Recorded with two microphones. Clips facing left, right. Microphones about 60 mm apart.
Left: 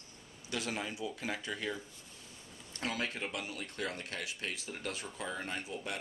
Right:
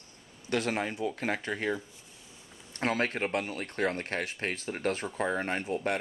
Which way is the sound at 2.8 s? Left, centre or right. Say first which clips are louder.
Right 8 dB; right.